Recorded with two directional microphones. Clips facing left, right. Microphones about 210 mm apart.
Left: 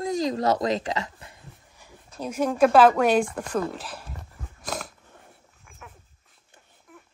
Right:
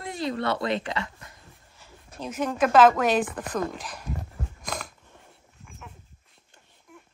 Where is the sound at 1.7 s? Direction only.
10° left (ahead or behind).